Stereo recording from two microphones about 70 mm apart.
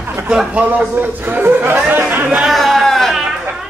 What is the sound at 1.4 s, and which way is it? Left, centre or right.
Speech, right.